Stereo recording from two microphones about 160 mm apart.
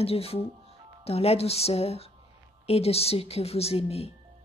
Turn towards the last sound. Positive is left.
turn(degrees=40)  # may be behind; listen again after turning